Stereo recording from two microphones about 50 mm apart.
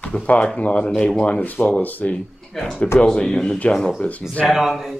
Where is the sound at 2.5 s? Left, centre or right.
Centre.